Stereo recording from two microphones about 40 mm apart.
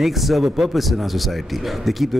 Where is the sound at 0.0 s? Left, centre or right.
Centre.